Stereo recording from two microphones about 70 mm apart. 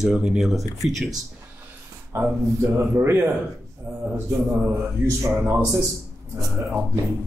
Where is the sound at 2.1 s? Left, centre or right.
Right.